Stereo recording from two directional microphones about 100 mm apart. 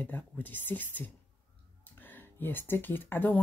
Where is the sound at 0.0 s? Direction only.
20° left (ahead or behind).